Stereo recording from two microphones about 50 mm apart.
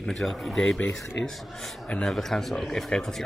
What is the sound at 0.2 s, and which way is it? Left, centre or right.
Speech, centre.